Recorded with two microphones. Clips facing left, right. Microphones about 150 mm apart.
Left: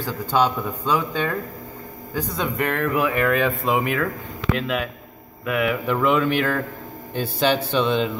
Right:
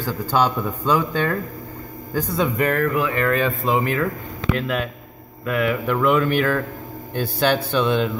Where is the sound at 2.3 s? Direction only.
5° right (ahead or behind).